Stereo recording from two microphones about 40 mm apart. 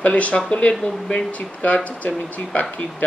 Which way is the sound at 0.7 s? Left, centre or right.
Left.